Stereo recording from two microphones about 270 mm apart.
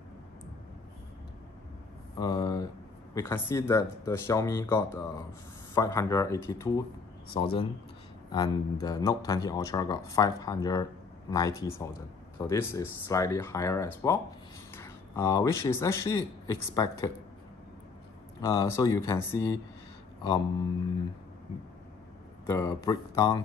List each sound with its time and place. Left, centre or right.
2.1 s a man's voice: centre
18.4 s a man's voice: centre
22.5 s a man's voice: centre